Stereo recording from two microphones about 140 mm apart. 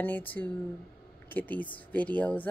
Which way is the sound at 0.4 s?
15° left (ahead or behind).